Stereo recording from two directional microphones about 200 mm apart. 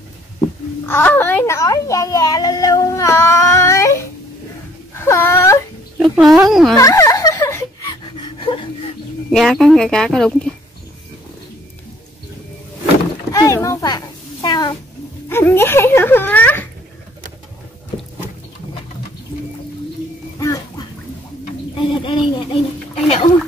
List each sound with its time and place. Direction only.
0.8 s a child's voice: 10° left (ahead or behind)
4.9 s whimper: 10° left (ahead or behind)
5.9 s a sound: 5° right (ahead or behind)
6.4 s speech: centre (ahead or behind)
6.8 s laughter: 15° left (ahead or behind)
9.3 s speech: centre (ahead or behind)
13.3 s a child's voice: 15° left (ahead or behind)
20.3 s a sound: 15° left (ahead or behind)